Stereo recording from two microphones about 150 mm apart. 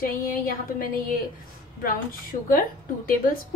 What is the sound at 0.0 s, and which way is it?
Speech, 70° left (ahead or behind).